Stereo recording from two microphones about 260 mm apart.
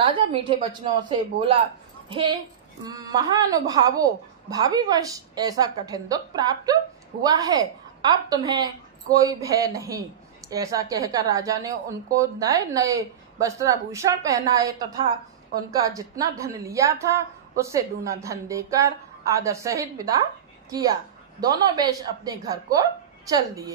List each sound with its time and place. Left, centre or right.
0.3 s a woman's voice: centre